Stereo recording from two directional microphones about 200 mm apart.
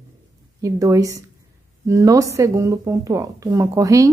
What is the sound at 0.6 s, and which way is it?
A woman's voice, 15° right (ahead or behind).